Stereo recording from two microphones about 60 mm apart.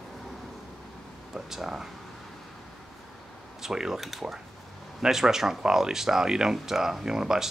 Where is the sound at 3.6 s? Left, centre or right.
Centre.